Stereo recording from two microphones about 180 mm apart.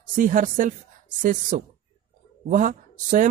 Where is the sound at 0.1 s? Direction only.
45° right (ahead or behind).